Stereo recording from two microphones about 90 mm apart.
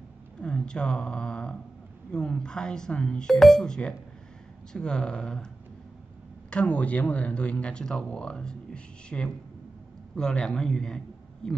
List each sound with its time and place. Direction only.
0.4 s speech: 10° left (ahead or behind)
6.5 s speech: 10° left (ahead or behind)